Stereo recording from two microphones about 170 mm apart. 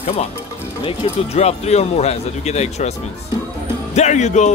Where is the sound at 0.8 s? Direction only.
35° left (ahead or behind).